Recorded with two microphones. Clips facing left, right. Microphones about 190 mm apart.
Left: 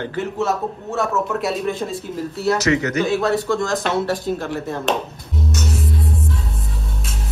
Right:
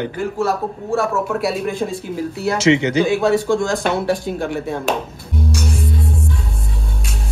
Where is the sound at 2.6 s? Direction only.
25° right (ahead or behind).